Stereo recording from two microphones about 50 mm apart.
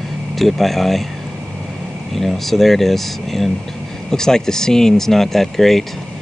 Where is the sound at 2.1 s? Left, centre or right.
Centre.